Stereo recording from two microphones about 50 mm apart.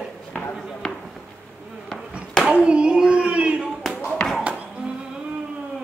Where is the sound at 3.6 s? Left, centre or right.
Centre.